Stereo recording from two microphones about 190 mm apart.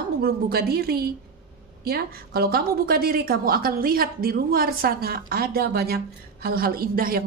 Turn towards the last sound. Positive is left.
turn(degrees=-50)  # may be behind; listen again after turning